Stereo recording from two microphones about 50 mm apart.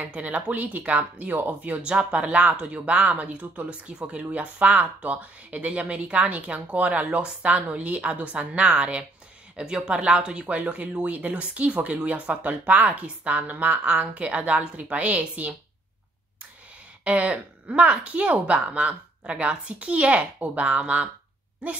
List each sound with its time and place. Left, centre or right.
0.0 s speech: right
1.8 s speech: right
13.8 s speech: right
17.0 s speech: right